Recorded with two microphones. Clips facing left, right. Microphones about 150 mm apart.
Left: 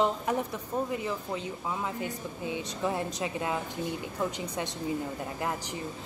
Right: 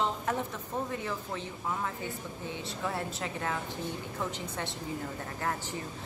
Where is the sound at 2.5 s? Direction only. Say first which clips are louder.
Left 5 dB; 15° left (ahead or behind).